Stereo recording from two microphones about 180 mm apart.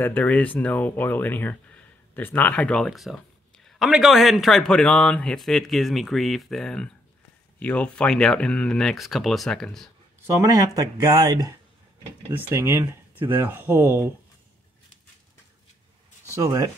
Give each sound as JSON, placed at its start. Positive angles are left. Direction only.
{"t": 0.0, "sound": "speech", "side_deg": 10}
{"t": 10.4, "sound": "speech", "side_deg": -20}
{"t": 16.3, "sound": "speech", "side_deg": -20}